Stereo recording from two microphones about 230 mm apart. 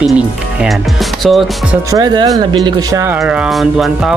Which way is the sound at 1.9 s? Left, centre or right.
Centre.